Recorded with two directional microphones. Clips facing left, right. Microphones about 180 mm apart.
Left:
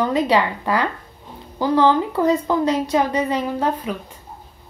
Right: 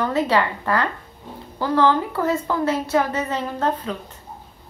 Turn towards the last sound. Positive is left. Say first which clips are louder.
# left 2 dB
turn(degrees=10)  # may be behind; listen again after turning